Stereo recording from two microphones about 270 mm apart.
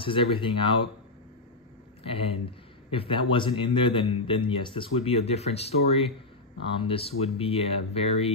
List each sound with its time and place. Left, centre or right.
0.0 s a man's voice: centre
2.0 s a man's voice: left